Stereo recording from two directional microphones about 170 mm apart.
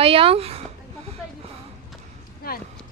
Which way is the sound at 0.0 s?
35° right (ahead or behind).